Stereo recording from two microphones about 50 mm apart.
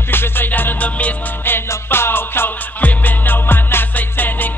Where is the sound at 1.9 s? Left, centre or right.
Left.